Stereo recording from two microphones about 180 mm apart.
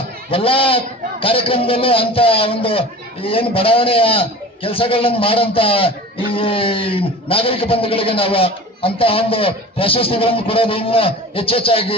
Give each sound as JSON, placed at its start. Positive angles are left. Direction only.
{"t": 0.3, "sound": "a man's voice", "side_deg": 30}